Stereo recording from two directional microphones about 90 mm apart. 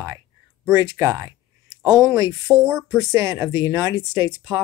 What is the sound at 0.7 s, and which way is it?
Speech, 35° right (ahead or behind).